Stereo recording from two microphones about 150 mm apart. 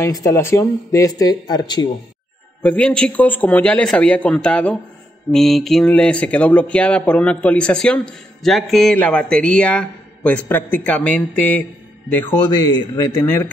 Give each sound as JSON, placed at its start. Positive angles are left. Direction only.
{"t": 0.0, "sound": "speech", "side_deg": 20}
{"t": 2.6, "sound": "speech", "side_deg": 10}